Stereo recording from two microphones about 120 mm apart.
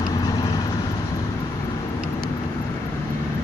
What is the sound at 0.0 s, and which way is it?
Vehicle, 30° left (ahead or behind).